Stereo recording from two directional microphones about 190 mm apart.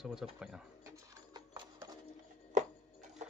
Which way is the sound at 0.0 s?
5° right (ahead or behind).